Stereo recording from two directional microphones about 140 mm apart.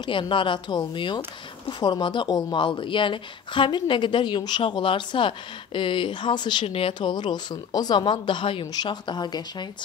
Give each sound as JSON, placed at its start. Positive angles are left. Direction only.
{"t": 0.0, "sound": "speech", "side_deg": 35}